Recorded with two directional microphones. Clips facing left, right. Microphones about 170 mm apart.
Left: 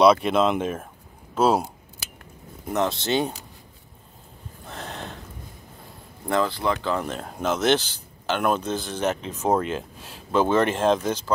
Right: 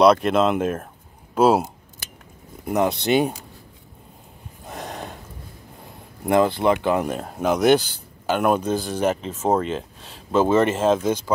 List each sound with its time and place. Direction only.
0.0 s speech: centre (ahead or behind)
4.6 s a sound: 10° right (ahead or behind)
6.2 s speech: 15° right (ahead or behind)
7.2 s speech: 5° right (ahead or behind)